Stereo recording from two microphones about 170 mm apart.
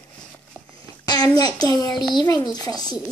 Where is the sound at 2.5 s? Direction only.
25° left (ahead or behind).